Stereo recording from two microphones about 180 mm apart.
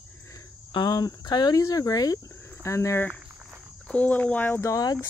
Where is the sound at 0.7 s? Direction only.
20° left (ahead or behind).